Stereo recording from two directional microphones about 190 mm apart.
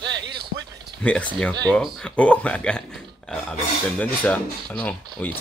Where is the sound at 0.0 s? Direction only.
65° right (ahead or behind).